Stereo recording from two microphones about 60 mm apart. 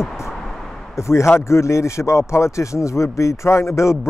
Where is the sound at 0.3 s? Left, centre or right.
Centre.